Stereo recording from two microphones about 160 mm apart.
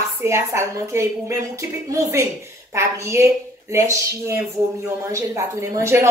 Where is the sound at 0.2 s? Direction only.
15° right (ahead or behind).